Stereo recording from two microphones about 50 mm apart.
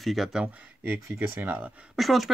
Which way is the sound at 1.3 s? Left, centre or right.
Right.